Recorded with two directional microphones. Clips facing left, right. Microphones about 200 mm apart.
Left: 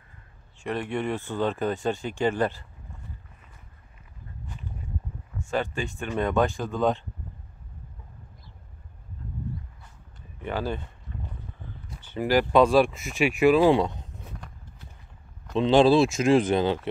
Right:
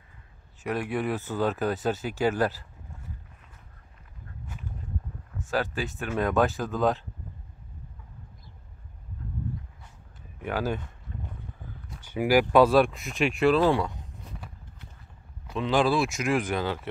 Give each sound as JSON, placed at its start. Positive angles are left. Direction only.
{"t": 0.7, "sound": "speech", "side_deg": -5}
{"t": 5.5, "sound": "speech", "side_deg": 0}
{"t": 10.4, "sound": "speech", "side_deg": -10}
{"t": 12.0, "sound": "speech", "side_deg": -10}
{"t": 13.7, "sound": "speech", "side_deg": 20}
{"t": 14.4, "sound": "horse", "side_deg": -5}
{"t": 15.5, "sound": "speech", "side_deg": 25}